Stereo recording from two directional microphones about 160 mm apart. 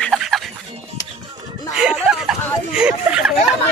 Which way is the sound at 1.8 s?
5° right (ahead or behind).